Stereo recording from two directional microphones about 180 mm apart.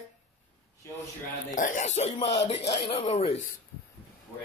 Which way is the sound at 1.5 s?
45° left (ahead or behind).